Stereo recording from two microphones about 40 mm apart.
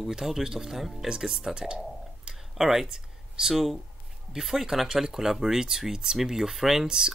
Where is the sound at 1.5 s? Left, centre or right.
Right.